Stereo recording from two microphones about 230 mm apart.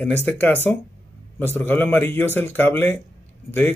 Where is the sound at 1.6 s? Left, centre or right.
Centre.